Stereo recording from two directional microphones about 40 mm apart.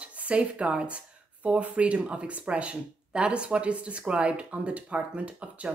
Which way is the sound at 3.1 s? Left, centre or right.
Right.